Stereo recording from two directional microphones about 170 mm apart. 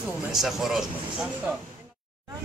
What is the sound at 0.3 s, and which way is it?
Speech, centre (ahead or behind).